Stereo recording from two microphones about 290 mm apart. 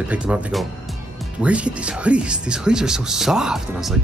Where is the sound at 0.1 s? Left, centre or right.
Centre.